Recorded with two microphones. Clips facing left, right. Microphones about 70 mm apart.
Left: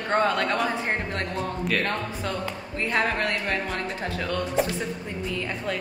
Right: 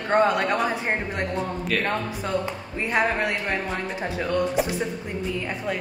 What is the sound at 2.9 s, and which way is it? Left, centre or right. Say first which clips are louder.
Speech: right 2 dB; centre.